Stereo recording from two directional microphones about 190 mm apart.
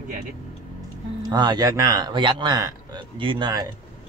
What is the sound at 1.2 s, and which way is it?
A man's voice, 20° right (ahead or behind).